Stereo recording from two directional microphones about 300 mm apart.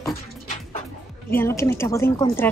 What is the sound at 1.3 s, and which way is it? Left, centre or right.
Speech, centre.